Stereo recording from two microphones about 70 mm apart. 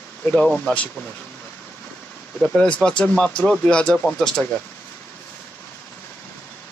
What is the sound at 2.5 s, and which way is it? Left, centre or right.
Speech, centre.